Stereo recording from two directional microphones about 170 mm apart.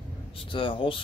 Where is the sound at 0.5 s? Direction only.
30° left (ahead or behind).